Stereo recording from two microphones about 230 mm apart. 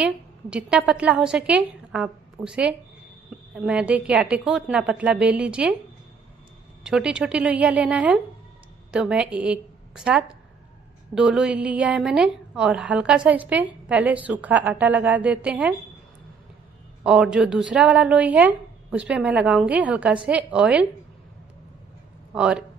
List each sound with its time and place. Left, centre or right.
0.0 s a woman's voice: centre
6.8 s a woman's voice: centre
17.0 s a woman's voice: centre
22.3 s speech: centre